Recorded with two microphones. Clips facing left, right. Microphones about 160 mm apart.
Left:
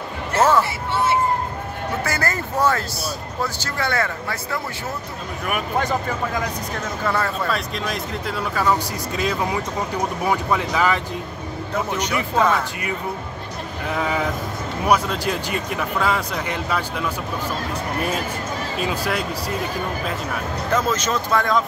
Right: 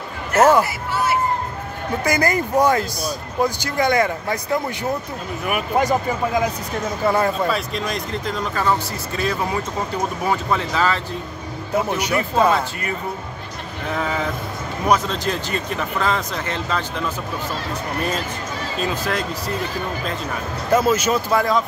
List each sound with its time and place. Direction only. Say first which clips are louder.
0.3 s speech: right 4 dB; 30° left (ahead or behind)
0.9 s a sound: left 1 dB; 25° left (ahead or behind)
2.0 s speech: right 5 dB; 15° right (ahead or behind)
7.1 s speech: right 5 dB; 15° right (ahead or behind)
7.4 s speech: right 2 dB; centre (ahead or behind)
12.4 s speech: right 2 dB; 10° right (ahead or behind)
13.9 s speech: left 1 dB; 10° left (ahead or behind)
18.8 s speech: right 1 dB; 10° left (ahead or behind)
20.7 s speech: right 5 dB; 10° right (ahead or behind)